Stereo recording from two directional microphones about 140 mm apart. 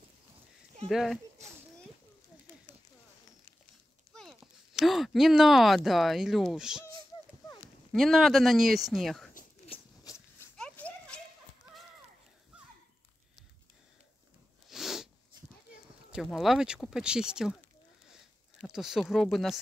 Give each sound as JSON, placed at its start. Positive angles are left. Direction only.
{"t": 0.8, "sound": "speech", "side_deg": 0}
{"t": 4.1, "sound": "a sound", "side_deg": 0}
{"t": 5.9, "sound": "speech", "side_deg": 0}
{"t": 7.9, "sound": "speech", "side_deg": 0}
{"t": 10.0, "sound": "dog", "side_deg": 20}
{"t": 10.5, "sound": "a sound", "side_deg": 5}
{"t": 14.7, "sound": "snort", "side_deg": 0}
{"t": 16.1, "sound": "speech", "side_deg": 0}
{"t": 18.7, "sound": "speech", "side_deg": -5}